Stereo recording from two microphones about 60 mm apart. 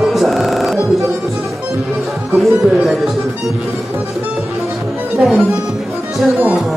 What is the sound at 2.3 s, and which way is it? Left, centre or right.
Speech, centre.